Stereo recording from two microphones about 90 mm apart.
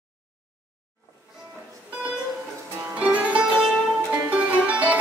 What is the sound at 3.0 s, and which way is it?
Music, 15° right (ahead or behind).